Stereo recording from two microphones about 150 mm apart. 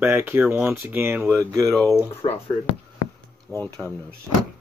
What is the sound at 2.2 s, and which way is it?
Speech, 35° left (ahead or behind).